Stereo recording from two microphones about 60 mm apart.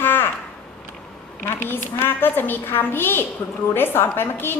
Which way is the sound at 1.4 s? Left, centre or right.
Left.